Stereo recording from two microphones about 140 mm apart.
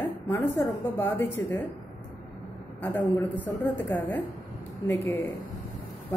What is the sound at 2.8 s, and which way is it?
Speech, 15° left (ahead or behind).